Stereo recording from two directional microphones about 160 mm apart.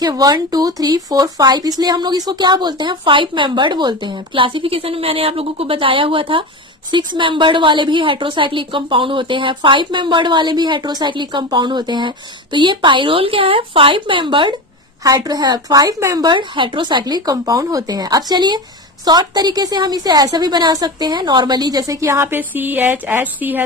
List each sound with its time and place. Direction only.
0.0 s a woman's voice: 25° right (ahead or behind)